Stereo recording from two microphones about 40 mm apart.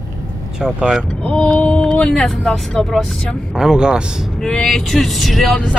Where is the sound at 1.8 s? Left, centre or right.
Centre.